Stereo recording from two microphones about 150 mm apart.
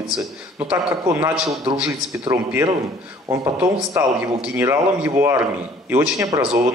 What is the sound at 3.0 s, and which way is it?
A man's voice, 10° right (ahead or behind).